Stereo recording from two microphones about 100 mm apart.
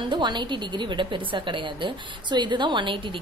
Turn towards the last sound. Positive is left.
turn(degrees=-55)  # may be behind; listen again after turning